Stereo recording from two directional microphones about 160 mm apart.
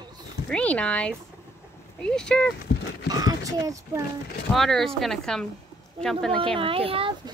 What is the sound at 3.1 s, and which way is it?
Speech, 25° right (ahead or behind).